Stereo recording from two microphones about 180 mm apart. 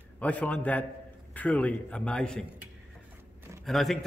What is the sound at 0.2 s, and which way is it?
A man's voice, 10° left (ahead or behind).